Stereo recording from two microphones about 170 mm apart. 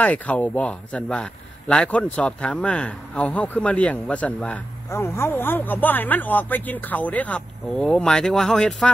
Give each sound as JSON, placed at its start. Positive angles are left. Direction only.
{"t": 0.0, "sound": "a man's voice", "side_deg": 10}